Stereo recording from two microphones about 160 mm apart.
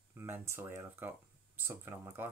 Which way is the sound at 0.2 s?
15° right (ahead or behind).